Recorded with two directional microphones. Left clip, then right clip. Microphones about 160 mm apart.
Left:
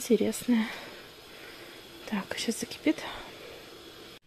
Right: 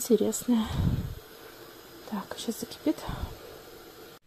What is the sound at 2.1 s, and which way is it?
Whispering, 10° left (ahead or behind).